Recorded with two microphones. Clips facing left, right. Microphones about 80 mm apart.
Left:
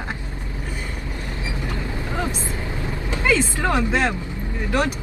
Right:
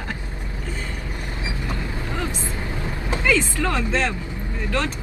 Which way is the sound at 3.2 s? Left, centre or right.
Left.